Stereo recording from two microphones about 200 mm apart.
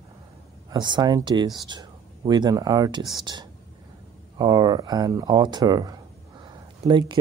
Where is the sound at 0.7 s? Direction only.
20° right (ahead or behind).